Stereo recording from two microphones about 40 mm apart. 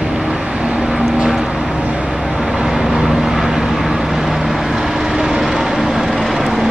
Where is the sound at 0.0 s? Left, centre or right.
Centre.